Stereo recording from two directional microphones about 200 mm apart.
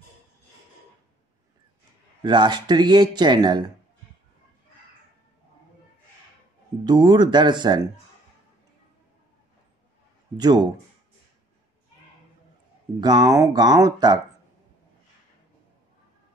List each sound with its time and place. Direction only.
2.2 s speech: 20° right (ahead or behind)
6.8 s speech: 20° right (ahead or behind)
10.3 s speech: 20° right (ahead or behind)
13.0 s speech: 20° right (ahead or behind)